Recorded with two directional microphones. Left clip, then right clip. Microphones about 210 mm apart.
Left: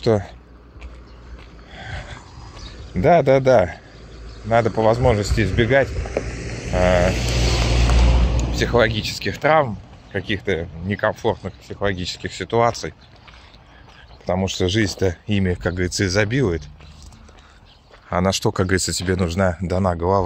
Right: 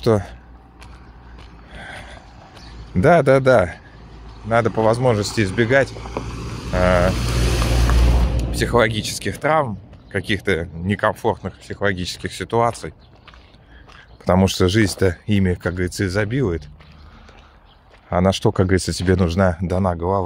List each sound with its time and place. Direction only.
0.0 s speech: 15° right (ahead or behind)
1.8 s a sound: 10° right (ahead or behind)
2.9 s speech: 15° right (ahead or behind)
5.9 s vehicle: 40° right (ahead or behind)
6.7 s speech: 10° right (ahead or behind)
7.1 s vehicle: 50° right (ahead or behind)
8.4 s speech: 15° right (ahead or behind)
10.1 s speech: 20° right (ahead or behind)
14.2 s speech: 30° right (ahead or behind); by 16.6 s centre (ahead or behind)
18.1 s speech: 20° right (ahead or behind); by 20.2 s centre (ahead or behind)